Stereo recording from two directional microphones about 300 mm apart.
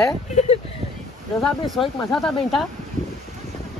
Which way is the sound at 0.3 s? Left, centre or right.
Left.